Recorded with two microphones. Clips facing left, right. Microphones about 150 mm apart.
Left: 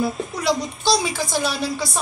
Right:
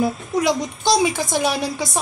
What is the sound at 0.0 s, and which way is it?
A woman's voice, 20° right (ahead or behind).